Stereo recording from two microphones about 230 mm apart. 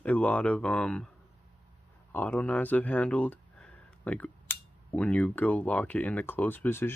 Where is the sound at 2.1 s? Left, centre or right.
Centre.